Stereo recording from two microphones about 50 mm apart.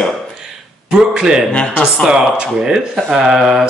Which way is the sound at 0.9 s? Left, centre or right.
Centre.